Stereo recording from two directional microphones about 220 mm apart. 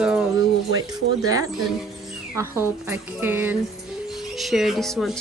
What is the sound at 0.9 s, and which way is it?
A woman's voice, 15° right (ahead or behind).